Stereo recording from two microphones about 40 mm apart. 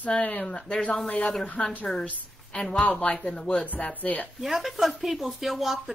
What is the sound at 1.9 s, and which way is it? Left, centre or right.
Speech, centre.